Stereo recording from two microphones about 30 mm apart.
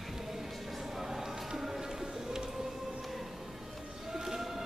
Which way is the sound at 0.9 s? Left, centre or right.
Centre.